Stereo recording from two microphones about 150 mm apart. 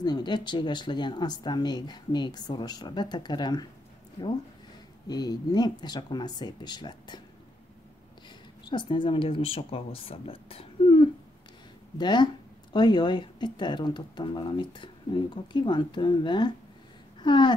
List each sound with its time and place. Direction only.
0.0 s speech: 30° left (ahead or behind)
5.0 s speech: 25° left (ahead or behind)
8.6 s speech: 30° left (ahead or behind)
17.2 s a sound: 30° left (ahead or behind)